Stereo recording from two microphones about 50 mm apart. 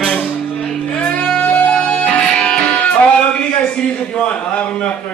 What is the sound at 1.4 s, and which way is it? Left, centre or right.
Music, left.